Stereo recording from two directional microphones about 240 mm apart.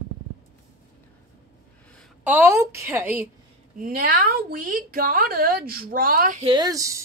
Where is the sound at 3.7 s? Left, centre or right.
Right.